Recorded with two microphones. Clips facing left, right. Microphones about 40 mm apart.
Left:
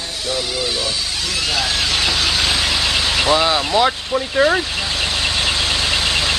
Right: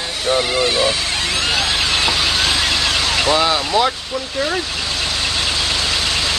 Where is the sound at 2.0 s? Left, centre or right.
Centre.